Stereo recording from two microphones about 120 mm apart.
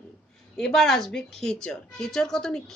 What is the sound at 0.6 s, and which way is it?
A woman's voice, 5° left (ahead or behind).